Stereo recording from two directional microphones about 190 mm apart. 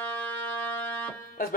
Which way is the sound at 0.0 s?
10° left (ahead or behind).